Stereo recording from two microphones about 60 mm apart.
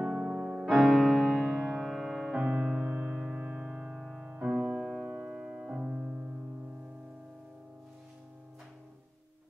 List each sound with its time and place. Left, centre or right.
0.0 s music: centre
2.3 s music: centre
3.7 s music: centre
5.0 s music: right